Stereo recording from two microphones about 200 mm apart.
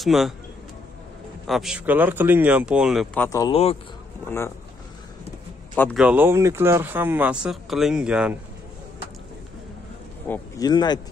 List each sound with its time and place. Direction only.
0.0 s speech: centre (ahead or behind)
1.5 s speech: centre (ahead or behind)
3.2 s speech: 15° left (ahead or behind)
5.9 s speech: 10° right (ahead or behind)
10.2 s speech: 10° left (ahead or behind)
10.7 s speech: 20° left (ahead or behind)